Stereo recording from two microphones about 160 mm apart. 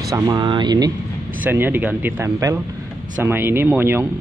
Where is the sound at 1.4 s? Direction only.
15° right (ahead or behind).